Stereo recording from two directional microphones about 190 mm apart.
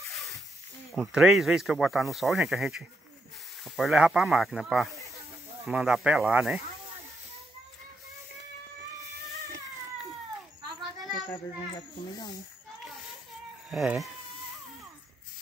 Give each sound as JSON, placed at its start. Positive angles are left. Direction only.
{"t": 0.9, "sound": "speech", "side_deg": 0}
{"t": 11.2, "sound": "a child's voice", "side_deg": 20}
{"t": 13.7, "sound": "speech", "side_deg": 0}